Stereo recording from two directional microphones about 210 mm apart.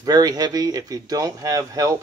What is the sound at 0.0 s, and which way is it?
Speech, 20° right (ahead or behind).